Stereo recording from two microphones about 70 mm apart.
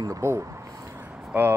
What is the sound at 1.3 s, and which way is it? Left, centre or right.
Speech, right.